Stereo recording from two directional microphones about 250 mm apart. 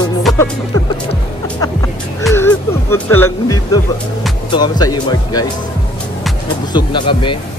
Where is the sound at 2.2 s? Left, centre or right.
Centre.